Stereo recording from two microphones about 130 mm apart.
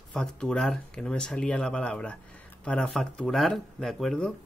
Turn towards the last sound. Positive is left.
turn(degrees=5)  # may be behind; listen again after turning